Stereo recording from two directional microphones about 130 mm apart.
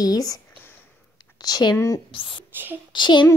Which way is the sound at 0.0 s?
30° left (ahead or behind).